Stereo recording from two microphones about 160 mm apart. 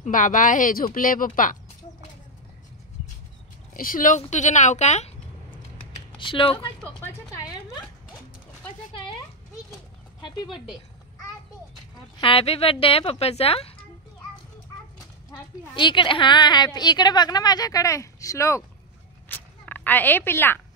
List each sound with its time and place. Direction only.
0.0 s speech: 55° left (ahead or behind)
3.7 s speech: 60° left (ahead or behind)
6.1 s speech: 30° left (ahead or behind)
7.0 s a woman's voice: 20° left (ahead or behind)
10.2 s a woman's voice: 30° left (ahead or behind)
12.2 s speech: 35° left (ahead or behind)
15.7 s a woman's voice: 30° left (ahead or behind)
19.2 s zipper: 10° left (ahead or behind)